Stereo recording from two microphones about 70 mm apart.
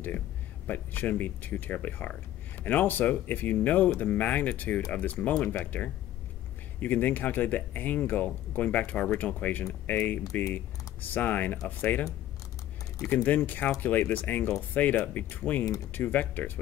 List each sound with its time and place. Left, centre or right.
0.7 s speech: left
6.8 s speech: left
13.0 s speech: left